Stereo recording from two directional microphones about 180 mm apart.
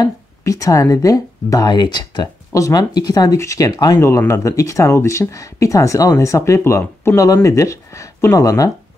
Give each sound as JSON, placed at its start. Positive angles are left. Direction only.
{"t": 0.0, "sound": "speech", "side_deg": 20}